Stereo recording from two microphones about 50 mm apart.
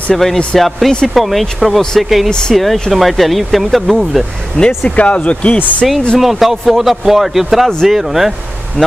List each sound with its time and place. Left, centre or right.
0.1 s speech: centre
4.6 s speech: left
6.1 s speech: centre